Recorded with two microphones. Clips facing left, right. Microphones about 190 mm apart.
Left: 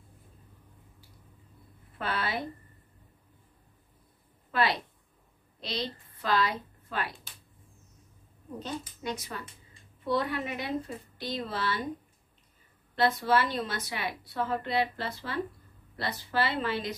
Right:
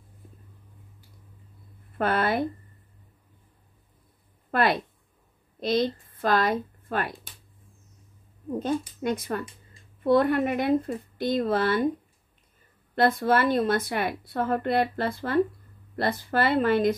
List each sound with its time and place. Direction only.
2.0 s speech: 50° right (ahead or behind)
4.5 s speech: 55° right (ahead or behind)
8.5 s speech: 50° right (ahead or behind)
12.9 s speech: 50° right (ahead or behind)